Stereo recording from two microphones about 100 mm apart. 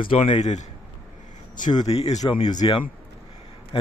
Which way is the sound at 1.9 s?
90° left.